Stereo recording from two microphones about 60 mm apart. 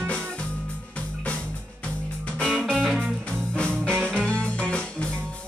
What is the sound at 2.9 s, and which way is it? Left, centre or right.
Music, centre.